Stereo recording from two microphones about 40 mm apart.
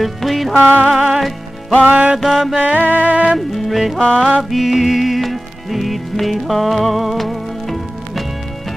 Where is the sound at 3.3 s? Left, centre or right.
Centre.